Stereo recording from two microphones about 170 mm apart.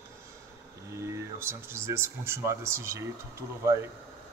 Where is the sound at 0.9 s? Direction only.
15° right (ahead or behind).